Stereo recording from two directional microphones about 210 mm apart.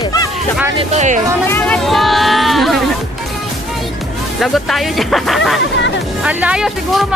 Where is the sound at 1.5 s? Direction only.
10° left (ahead or behind).